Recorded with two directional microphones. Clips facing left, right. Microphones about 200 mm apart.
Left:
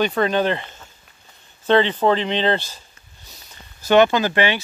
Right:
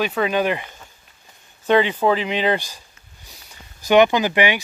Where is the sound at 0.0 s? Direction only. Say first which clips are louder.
Left 1 dB; 5° right (ahead or behind).